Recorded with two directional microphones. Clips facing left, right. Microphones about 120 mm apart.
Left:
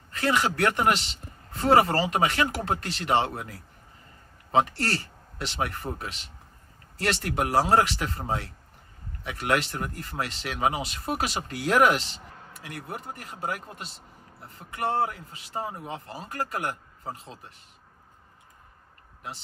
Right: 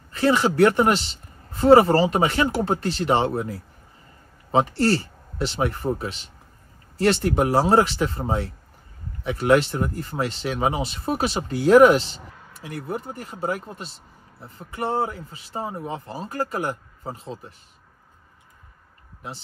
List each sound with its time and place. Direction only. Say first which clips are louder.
0.1 s speech: right 6 dB; 30° right (ahead or behind)
15.0 s speech: right 2 dB; 30° right (ahead or behind)